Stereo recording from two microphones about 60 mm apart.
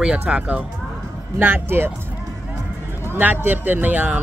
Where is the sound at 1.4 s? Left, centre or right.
Right.